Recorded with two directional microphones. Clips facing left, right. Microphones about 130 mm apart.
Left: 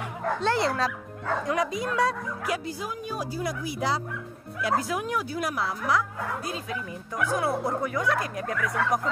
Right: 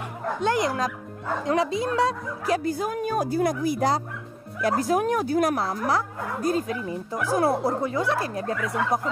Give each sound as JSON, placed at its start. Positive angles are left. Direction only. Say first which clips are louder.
{"t": 0.2, "sound": "speech", "louder": "right 1 dB", "side_deg": -15}
{"t": 1.4, "sound": "speech", "louder": "right 5 dB", "side_deg": -25}
{"t": 2.5, "sound": "speech", "louder": "right 10 dB", "side_deg": -50}